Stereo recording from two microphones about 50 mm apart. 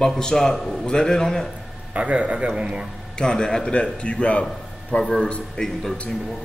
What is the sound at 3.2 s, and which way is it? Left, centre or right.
A man's voice, centre.